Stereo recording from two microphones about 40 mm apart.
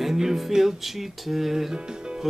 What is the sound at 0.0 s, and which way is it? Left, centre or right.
Music, centre.